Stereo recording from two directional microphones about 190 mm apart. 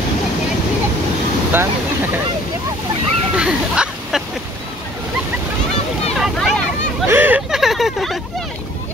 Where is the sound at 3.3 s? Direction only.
5° right (ahead or behind).